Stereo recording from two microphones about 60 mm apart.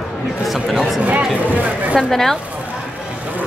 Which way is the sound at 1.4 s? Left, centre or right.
Right.